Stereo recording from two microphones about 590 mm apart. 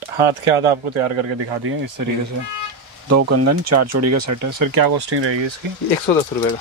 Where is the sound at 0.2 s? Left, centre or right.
Right.